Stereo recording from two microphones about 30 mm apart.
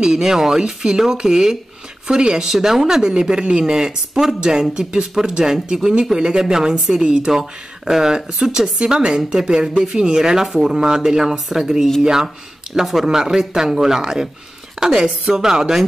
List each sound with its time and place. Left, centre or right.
0.0 s speech: centre
12.8 s speech: centre
13.1 s speech: centre
14.8 s a woman's voice: right
15.2 s speech: centre